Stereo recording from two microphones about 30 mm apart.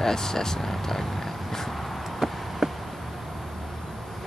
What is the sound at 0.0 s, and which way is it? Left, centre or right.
Speech, centre.